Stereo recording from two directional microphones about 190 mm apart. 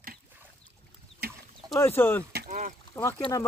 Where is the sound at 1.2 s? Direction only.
55° right (ahead or behind).